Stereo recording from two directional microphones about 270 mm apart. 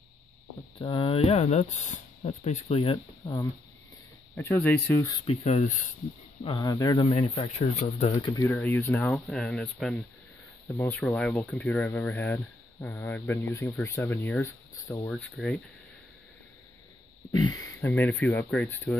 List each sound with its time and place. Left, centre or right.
0.7 s speech: centre
5.2 s speech: left
8.3 s speech: centre
17.4 s speech: centre